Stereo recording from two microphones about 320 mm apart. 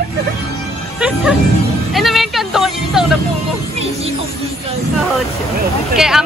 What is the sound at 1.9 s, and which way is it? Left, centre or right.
Music, centre.